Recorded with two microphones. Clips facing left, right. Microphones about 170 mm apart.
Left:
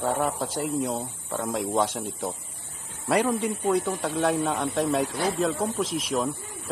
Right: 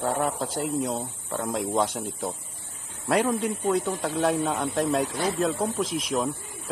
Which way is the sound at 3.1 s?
Centre (ahead or behind).